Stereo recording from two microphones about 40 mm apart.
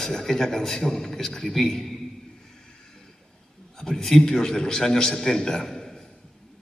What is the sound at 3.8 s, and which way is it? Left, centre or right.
A man's voice, centre.